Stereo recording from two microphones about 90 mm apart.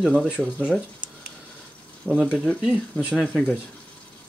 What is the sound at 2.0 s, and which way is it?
Speech, 10° right (ahead or behind).